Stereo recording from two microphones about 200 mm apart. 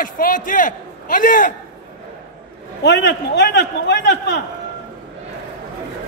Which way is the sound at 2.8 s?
60° left (ahead or behind).